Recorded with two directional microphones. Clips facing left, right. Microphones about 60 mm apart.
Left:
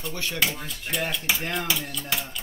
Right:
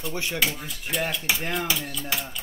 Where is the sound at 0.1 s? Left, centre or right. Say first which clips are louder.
Right 3 dB; centre.